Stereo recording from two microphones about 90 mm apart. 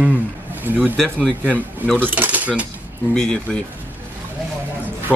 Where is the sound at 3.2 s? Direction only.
5° left (ahead or behind).